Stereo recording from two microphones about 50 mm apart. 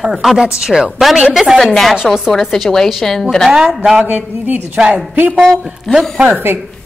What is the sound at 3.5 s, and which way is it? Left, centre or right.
Speech, centre.